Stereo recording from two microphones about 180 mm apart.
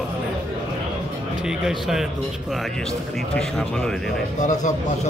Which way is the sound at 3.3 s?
5° left (ahead or behind).